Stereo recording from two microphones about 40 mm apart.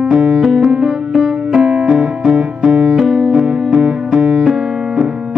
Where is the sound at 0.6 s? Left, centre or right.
Centre.